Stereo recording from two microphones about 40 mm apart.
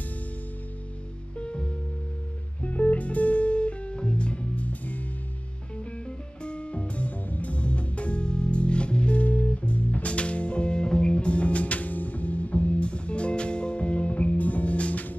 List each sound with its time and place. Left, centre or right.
1.4 s music: left
2.6 s music: left
6.0 s music: left